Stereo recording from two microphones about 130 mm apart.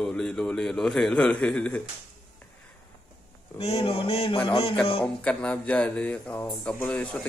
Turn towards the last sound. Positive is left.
turn(degrees=10)  # may be behind; listen again after turning